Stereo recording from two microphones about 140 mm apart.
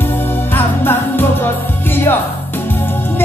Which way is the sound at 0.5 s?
15° left (ahead or behind).